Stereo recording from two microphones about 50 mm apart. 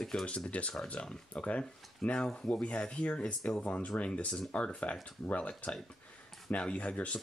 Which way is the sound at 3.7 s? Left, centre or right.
Left.